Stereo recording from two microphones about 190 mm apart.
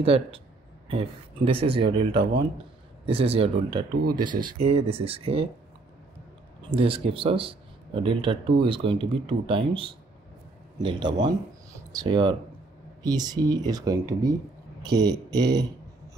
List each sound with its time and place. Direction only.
0.0 s speech: 30° right (ahead or behind)
6.7 s speech: 30° right (ahead or behind)